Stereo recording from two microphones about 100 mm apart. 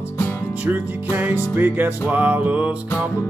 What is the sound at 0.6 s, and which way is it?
Music, 15° right (ahead or behind).